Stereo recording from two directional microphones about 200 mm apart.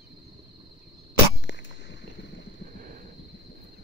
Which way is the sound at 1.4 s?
65° left (ahead or behind).